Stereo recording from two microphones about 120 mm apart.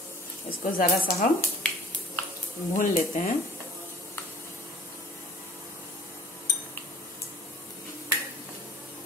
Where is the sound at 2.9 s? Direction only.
90° left.